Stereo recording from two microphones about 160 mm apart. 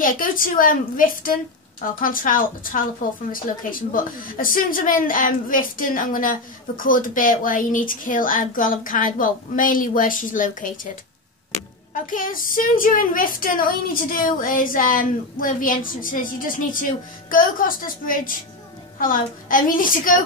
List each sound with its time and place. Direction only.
0.0 s a woman's voice: 60° left (ahead or behind)
11.9 s a woman's voice: 55° left (ahead or behind)